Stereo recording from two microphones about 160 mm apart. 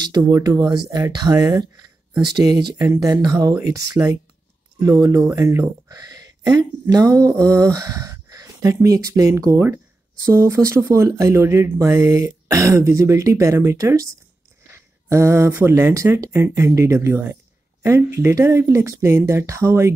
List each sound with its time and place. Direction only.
0.0 s speech: 25° right (ahead or behind)